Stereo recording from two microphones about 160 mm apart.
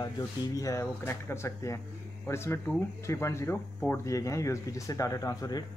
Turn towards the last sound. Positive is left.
turn(degrees=25)  # may be behind; listen again after turning